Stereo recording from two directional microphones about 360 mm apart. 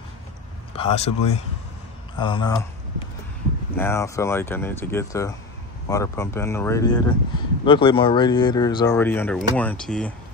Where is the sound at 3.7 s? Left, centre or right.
Centre.